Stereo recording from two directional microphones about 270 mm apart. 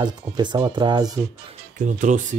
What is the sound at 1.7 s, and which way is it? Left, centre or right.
Speech, right.